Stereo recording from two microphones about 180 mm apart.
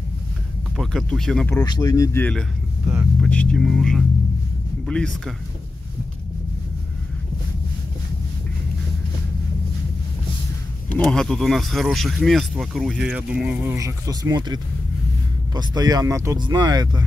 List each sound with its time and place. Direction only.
0.7 s speech: centre (ahead or behind)
1.5 s speech: 20° left (ahead or behind)
3.2 s speech: 5° left (ahead or behind)
10.9 s speech: 5° left (ahead or behind)
13.7 s speech: 20° right (ahead or behind)